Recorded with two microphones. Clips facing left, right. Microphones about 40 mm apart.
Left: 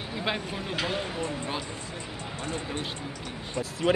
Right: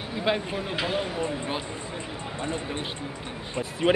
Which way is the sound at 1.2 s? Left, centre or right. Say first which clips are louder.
Right 2 dB; right.